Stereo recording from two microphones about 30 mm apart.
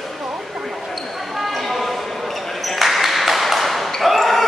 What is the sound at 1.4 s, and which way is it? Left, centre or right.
Basketball bounce, centre.